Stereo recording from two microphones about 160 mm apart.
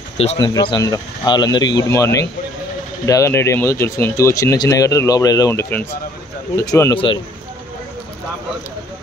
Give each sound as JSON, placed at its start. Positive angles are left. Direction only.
{"t": 0.4, "sound": "speech", "side_deg": 30}